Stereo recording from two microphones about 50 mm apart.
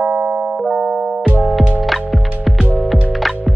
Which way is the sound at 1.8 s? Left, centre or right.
Centre.